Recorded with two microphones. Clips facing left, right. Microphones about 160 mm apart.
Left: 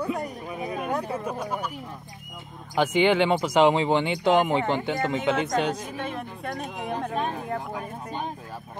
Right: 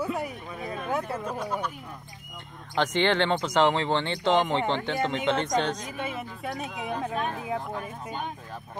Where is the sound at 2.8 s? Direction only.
10° left (ahead or behind).